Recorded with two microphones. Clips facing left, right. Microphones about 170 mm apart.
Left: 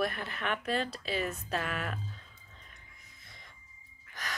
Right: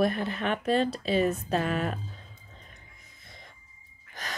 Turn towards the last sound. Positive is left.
turn(degrees=-25)  # may be behind; listen again after turning